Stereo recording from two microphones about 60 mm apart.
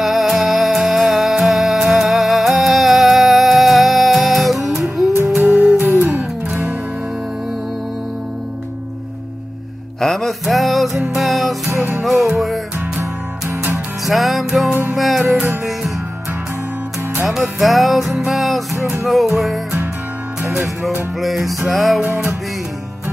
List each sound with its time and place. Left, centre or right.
0.0 s music: centre
5.9 s music: right
9.9 s music: centre
14.0 s music: centre
17.3 s music: centre